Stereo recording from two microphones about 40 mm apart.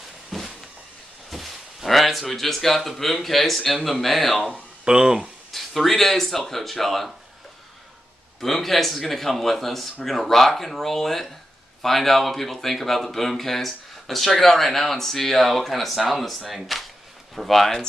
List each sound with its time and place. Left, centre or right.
0.3 s a sound: centre
1.3 s speech: centre
4.5 s speech: centre
5.5 s speech: centre
8.4 s speech: centre